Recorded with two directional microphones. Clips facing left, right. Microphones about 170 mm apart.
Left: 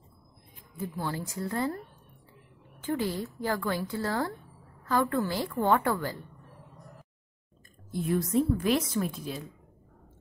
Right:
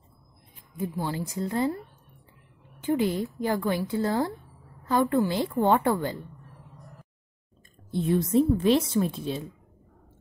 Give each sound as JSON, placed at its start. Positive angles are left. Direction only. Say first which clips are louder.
{"t": 0.7, "sound": "a woman's voice", "louder": "right 3 dB", "side_deg": -15}
{"t": 2.8, "sound": "a woman's voice", "louder": "right 5 dB", "side_deg": -20}
{"t": 7.9, "sound": "a woman's voice", "louder": "right 4 dB", "side_deg": -25}